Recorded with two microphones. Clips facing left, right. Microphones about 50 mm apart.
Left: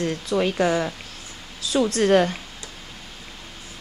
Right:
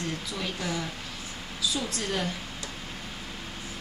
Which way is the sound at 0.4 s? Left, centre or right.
Left.